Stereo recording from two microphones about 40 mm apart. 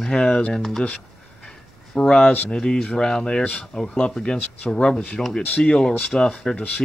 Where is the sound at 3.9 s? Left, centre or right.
Left.